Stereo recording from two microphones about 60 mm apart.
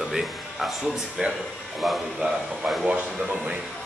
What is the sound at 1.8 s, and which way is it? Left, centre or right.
Speech, centre.